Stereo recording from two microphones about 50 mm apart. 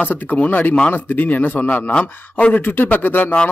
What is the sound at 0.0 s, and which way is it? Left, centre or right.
Speech, left.